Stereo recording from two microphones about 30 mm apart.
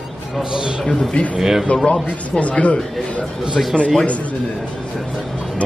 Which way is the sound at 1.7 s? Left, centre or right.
Left.